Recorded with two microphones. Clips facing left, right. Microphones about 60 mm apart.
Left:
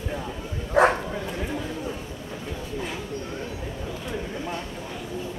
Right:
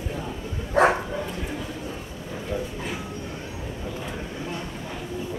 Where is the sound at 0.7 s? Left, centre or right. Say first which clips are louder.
Even; centre.